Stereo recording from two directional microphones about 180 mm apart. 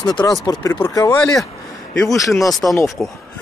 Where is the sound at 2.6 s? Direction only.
10° left (ahead or behind).